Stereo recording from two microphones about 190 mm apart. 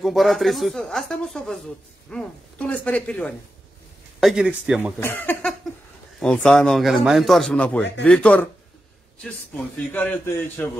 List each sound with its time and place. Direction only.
0.0 s a man's voice: centre (ahead or behind)
5.0 s a man's voice: 10° left (ahead or behind)